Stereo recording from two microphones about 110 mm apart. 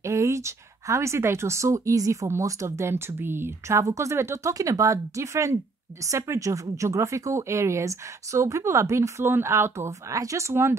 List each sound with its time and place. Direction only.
0.0 s speech: 30° right (ahead or behind)